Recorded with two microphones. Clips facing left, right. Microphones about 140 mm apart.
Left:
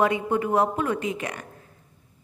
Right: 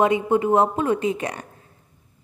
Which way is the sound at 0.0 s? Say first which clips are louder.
Right 4 dB; 20° right (ahead or behind).